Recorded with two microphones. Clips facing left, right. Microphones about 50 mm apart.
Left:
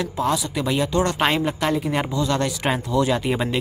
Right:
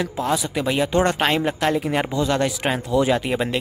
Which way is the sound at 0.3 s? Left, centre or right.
Centre.